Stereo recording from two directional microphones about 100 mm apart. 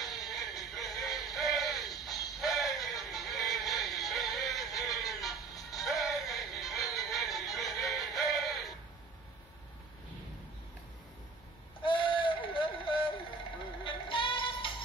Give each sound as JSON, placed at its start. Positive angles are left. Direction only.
{"t": 0.2, "sound": "music", "side_deg": 0}
{"t": 11.8, "sound": "vehicle", "side_deg": 60}
{"t": 13.8, "sound": "music", "side_deg": 60}